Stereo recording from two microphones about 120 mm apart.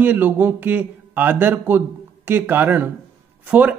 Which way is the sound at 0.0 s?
15° right (ahead or behind).